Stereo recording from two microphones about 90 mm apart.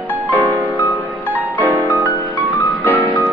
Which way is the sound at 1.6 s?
20° right (ahead or behind).